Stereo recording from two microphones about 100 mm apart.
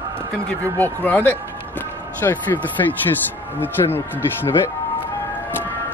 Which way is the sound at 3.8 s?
45° left (ahead or behind).